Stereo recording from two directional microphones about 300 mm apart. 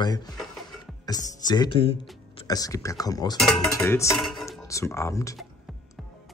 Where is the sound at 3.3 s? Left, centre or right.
Centre.